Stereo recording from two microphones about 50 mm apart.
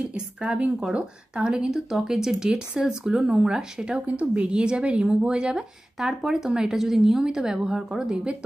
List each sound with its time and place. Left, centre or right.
0.1 s a woman's voice: centre
5.9 s a woman's voice: centre